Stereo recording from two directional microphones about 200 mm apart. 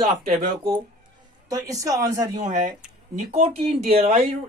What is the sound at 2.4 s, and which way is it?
Speech, 40° right (ahead or behind).